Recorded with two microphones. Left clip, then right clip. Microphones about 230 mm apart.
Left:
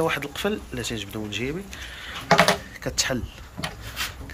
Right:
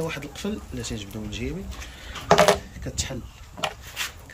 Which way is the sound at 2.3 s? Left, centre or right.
Right.